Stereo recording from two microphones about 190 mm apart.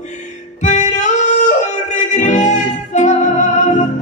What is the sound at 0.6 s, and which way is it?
Music, 40° left (ahead or behind).